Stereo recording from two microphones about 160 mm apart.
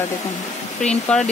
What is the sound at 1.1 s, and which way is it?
Speech, 5° left (ahead or behind).